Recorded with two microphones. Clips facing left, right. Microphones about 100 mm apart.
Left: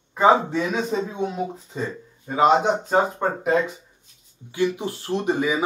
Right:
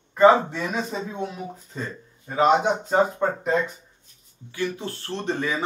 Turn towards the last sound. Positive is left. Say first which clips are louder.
# left 4 dB
turn(degrees=10)  # may be behind; listen again after turning